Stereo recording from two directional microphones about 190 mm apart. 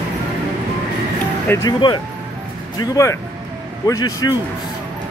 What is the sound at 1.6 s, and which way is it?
A man's voice, 20° left (ahead or behind).